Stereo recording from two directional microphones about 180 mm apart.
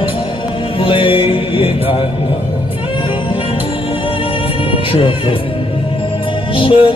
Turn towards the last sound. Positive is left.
turn(degrees=30)  # may be behind; listen again after turning